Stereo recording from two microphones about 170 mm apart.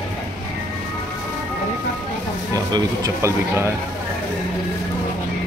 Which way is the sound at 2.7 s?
20° right (ahead or behind).